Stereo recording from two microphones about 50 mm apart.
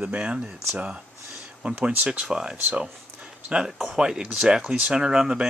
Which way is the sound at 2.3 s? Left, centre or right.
Centre.